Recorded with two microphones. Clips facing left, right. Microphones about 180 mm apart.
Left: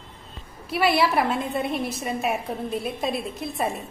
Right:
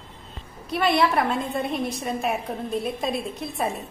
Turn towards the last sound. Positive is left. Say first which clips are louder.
# even
turn(degrees=0)  # may be behind; listen again after turning